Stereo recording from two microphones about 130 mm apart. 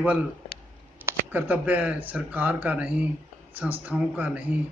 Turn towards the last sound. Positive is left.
turn(degrees=-10)  # may be behind; listen again after turning